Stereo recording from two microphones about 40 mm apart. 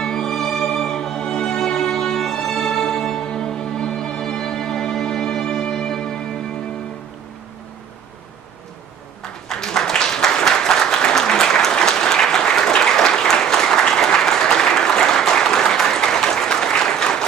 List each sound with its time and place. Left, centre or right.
0.0 s music: centre
9.5 s applause: centre